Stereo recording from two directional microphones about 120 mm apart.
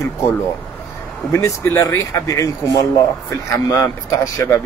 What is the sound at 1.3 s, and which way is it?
Speech, 25° left (ahead or behind).